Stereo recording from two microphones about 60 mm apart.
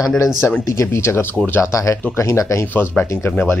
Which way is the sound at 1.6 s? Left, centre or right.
Left.